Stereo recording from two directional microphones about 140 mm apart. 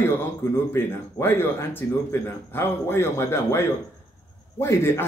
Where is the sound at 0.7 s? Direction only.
15° left (ahead or behind).